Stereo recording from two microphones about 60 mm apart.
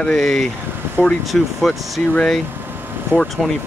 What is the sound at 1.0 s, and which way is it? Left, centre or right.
Speech, right.